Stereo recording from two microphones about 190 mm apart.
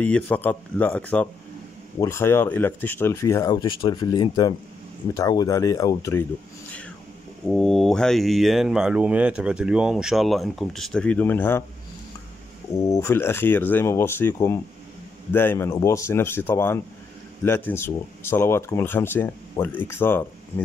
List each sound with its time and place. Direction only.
0.0 s speech: 10° left (ahead or behind)
7.4 s speech: centre (ahead or behind)
12.7 s speech: 15° left (ahead or behind)